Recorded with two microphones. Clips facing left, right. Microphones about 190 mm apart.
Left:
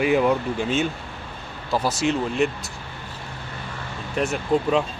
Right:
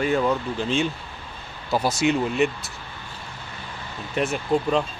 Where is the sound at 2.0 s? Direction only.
Centre (ahead or behind).